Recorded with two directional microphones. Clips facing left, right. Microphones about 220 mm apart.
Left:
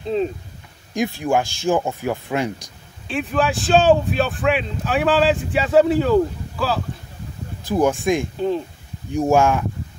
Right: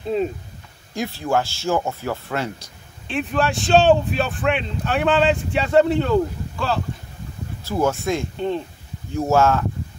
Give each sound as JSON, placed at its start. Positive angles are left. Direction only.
{"t": 0.1, "sound": "speech", "side_deg": -5}
{"t": 0.9, "sound": "speech", "side_deg": 15}
{"t": 3.1, "sound": "speech", "side_deg": 0}
{"t": 7.6, "sound": "speech", "side_deg": 15}
{"t": 8.4, "sound": "speech", "side_deg": 5}
{"t": 9.1, "sound": "speech", "side_deg": 15}